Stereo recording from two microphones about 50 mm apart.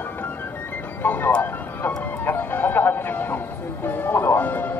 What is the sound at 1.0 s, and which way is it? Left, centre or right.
Speech, left.